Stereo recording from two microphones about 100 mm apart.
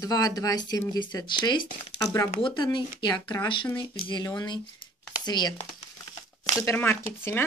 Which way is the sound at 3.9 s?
55° left (ahead or behind).